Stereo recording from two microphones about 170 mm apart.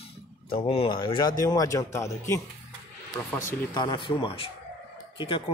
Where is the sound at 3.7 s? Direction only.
25° left (ahead or behind).